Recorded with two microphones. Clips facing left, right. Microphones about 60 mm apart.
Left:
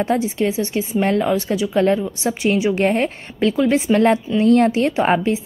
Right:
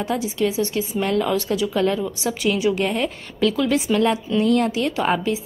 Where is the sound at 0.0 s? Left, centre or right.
Left.